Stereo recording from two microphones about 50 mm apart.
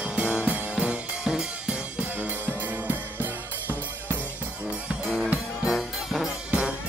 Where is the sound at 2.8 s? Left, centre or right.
Right.